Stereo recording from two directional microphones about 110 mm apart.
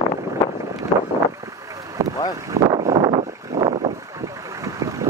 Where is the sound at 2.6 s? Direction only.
35° right (ahead or behind).